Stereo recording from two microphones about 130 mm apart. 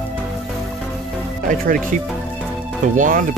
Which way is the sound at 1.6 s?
90° right.